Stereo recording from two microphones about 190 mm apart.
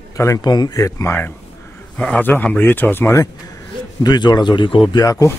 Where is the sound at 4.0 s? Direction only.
20° left (ahead or behind).